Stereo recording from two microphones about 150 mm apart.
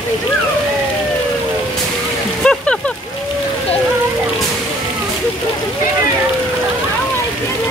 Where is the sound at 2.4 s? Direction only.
5° left (ahead or behind).